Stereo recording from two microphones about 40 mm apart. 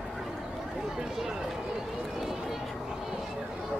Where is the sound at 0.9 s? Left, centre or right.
Centre.